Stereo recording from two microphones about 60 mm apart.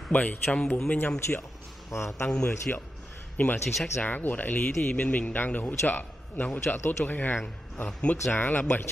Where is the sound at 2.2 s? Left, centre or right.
Left.